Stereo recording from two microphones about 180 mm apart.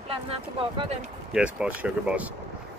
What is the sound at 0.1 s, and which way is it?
Speech, 30° right (ahead or behind).